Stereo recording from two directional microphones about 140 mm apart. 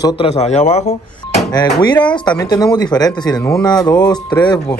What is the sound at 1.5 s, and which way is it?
A man's voice, 30° left (ahead or behind).